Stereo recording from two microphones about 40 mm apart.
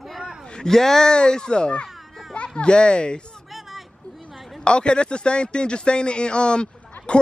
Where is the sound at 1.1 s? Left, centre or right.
Centre.